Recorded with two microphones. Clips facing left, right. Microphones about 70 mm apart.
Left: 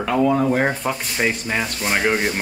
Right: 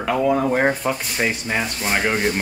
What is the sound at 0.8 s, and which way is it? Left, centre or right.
Speech, centre.